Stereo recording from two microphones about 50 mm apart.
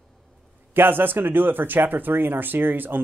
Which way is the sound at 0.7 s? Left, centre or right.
Right.